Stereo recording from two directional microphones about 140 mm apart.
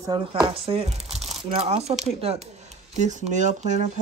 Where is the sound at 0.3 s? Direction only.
40° right (ahead or behind).